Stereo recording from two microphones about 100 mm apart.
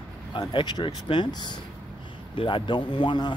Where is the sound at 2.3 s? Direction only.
55° left (ahead or behind).